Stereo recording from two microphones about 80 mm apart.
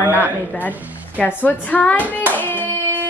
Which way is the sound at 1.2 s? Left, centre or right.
Centre.